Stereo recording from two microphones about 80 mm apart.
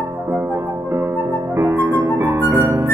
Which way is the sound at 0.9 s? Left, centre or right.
Right.